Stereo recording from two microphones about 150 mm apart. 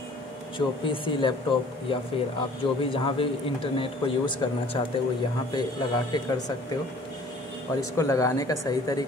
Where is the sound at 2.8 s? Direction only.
35° left (ahead or behind).